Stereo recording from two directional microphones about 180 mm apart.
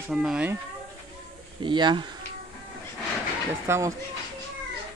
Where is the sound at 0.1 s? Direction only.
5° right (ahead or behind).